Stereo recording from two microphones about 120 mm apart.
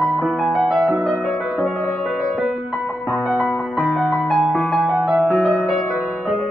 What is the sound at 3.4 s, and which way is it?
Music, 20° left (ahead or behind).